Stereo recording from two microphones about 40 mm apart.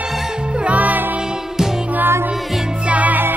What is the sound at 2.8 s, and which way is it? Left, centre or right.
Music, right.